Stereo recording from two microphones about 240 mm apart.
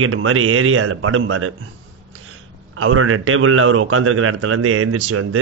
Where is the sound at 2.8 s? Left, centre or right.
Right.